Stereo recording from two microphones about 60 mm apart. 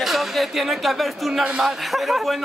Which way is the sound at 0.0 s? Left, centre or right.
Centre.